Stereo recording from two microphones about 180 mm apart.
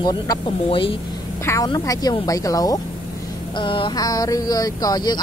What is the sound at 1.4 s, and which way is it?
Speech, 20° left (ahead or behind).